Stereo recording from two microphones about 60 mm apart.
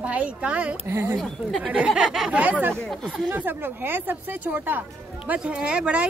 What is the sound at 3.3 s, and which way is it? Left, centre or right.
Speech, right.